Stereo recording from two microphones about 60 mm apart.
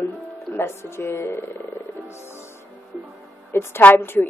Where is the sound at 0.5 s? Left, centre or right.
Left.